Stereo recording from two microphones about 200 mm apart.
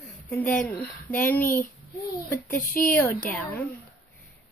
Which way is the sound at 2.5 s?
45° left (ahead or behind).